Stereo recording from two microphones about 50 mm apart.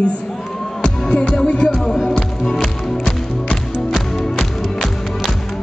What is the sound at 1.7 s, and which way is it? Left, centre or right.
Speech, centre.